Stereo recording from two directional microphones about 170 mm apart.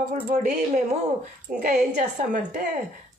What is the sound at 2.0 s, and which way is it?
Speech, 45° right (ahead or behind).